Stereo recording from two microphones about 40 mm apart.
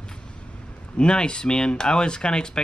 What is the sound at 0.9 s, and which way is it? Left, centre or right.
Speech, left.